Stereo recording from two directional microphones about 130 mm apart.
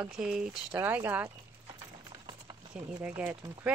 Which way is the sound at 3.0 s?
10° right (ahead or behind).